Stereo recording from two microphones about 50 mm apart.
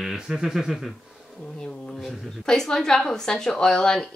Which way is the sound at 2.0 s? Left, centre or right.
Centre.